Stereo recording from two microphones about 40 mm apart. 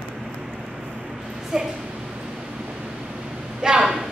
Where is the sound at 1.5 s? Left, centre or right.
Centre.